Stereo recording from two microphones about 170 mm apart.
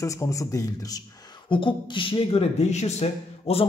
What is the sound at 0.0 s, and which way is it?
A man's voice, 20° left (ahead or behind).